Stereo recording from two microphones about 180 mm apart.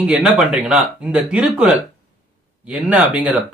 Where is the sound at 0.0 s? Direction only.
5° right (ahead or behind).